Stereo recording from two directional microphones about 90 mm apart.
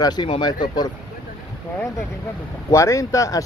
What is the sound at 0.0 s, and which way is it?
Speech, 50° left (ahead or behind).